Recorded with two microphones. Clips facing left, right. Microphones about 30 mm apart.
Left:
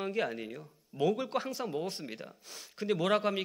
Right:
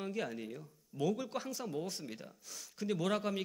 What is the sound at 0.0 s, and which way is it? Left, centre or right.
Speech, left.